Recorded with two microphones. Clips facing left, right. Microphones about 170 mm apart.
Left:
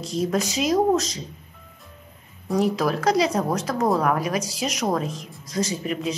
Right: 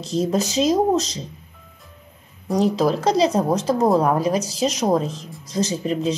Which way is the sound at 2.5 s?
25° right (ahead or behind).